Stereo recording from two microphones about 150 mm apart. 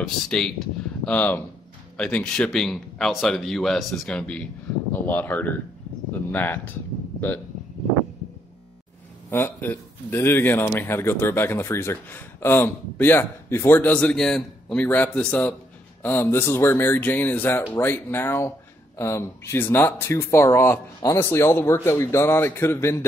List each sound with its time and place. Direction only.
0.0 s speech: 5° left (ahead or behind)
9.3 s speech: 15° left (ahead or behind)